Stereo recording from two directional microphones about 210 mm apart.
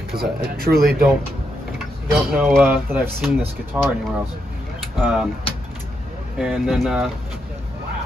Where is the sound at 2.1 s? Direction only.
Centre (ahead or behind).